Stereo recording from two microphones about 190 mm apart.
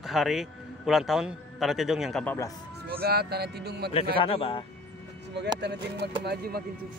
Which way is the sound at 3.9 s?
30° left (ahead or behind).